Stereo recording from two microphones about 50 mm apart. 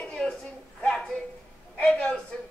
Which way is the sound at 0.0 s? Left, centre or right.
Centre.